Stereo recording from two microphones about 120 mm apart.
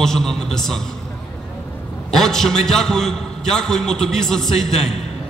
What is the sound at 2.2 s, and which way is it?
A man's voice, 5° left (ahead or behind).